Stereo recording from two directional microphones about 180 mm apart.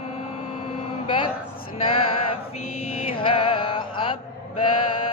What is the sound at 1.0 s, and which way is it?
Male singing, 30° left (ahead or behind).